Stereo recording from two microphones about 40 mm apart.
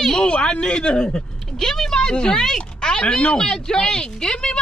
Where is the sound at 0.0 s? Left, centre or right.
Centre.